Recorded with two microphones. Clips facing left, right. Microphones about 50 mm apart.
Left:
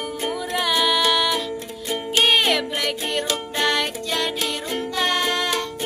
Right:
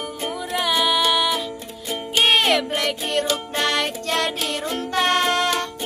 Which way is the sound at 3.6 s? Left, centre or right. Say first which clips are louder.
Left 1 dB; centre.